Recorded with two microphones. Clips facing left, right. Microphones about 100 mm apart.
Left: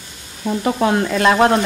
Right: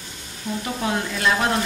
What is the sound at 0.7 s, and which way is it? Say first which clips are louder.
Stir: left 9 dB; 80° left.